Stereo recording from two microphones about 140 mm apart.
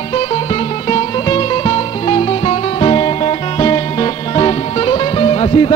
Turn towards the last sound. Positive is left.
turn(degrees=35)  # may be behind; listen again after turning